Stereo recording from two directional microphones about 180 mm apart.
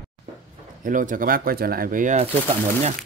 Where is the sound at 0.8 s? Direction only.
45° right (ahead or behind).